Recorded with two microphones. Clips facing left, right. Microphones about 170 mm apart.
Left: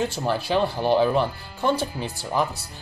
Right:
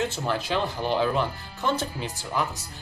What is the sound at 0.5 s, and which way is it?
A man's voice, 15° left (ahead or behind).